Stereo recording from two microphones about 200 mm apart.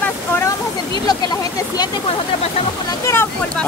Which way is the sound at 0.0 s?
10° left (ahead or behind).